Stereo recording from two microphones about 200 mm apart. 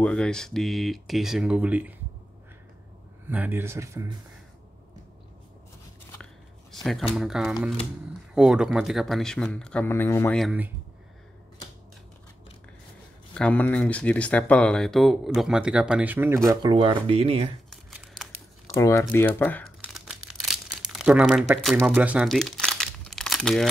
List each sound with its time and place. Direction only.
0.0 s speech: 5° left (ahead or behind)
3.3 s speech: 10° right (ahead or behind)
6.7 s speech: centre (ahead or behind)
10.3 s speech: 5° right (ahead or behind)
13.3 s speech: 5° left (ahead or behind); by 16.3 s 10° right (ahead or behind)
16.6 s speech: 25° right (ahead or behind)
17.6 s crumpling: centre (ahead or behind)
18.8 s speech: 15° left (ahead or behind)
19.8 s tearing: centre (ahead or behind)
20.2 s crumpling: 5° right (ahead or behind)